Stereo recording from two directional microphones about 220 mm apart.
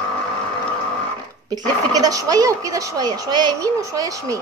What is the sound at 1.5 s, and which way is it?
Speech, 15° right (ahead or behind).